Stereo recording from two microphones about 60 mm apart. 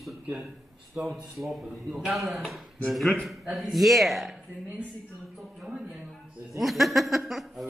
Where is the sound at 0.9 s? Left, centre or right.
Right.